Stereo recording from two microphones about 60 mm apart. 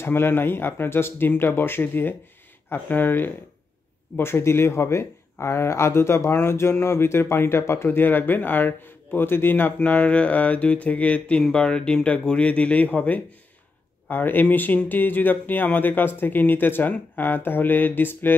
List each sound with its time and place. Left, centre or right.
0.0 s speech: left
4.2 s speech: left